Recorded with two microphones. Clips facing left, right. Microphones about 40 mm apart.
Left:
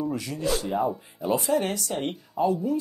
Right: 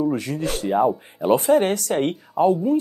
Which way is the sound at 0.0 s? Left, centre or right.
Right.